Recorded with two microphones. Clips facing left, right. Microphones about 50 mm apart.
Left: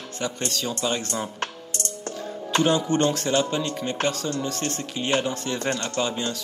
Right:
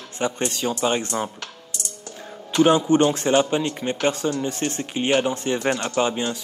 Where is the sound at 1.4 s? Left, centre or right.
Left.